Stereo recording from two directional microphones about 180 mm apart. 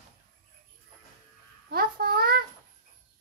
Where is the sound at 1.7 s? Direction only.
55° right (ahead or behind).